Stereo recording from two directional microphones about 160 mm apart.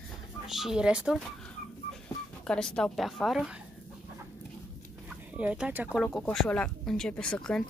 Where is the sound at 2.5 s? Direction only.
5° left (ahead or behind).